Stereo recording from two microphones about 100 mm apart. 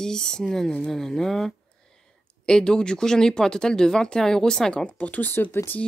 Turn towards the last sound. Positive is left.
turn(degrees=20)  # may be behind; listen again after turning